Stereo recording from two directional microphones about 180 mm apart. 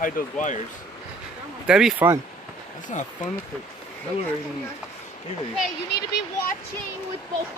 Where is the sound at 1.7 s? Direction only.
5° right (ahead or behind).